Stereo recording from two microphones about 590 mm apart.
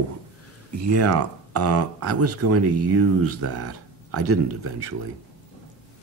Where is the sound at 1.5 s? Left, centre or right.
Right.